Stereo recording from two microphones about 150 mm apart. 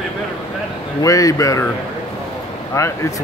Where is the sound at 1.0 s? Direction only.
20° left (ahead or behind).